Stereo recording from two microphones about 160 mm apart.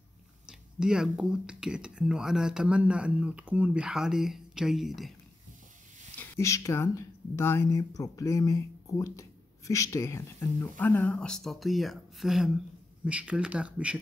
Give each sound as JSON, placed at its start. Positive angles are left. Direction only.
{"t": 0.5, "sound": "speech", "side_deg": -5}
{"t": 6.1, "sound": "speech", "side_deg": 15}